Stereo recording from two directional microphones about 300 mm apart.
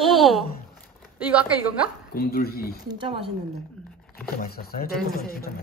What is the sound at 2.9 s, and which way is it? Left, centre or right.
Speech, centre.